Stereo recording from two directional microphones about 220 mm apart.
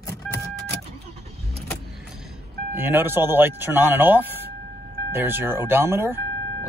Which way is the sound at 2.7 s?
10° right (ahead or behind).